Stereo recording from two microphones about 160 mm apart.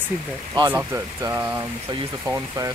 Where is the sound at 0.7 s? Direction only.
10° right (ahead or behind).